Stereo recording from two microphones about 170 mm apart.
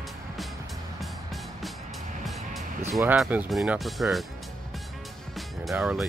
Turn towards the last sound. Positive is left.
turn(degrees=-5)  # may be behind; listen again after turning